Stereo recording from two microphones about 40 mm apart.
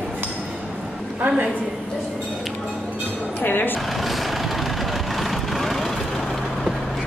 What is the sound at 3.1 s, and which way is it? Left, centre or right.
Chink, left.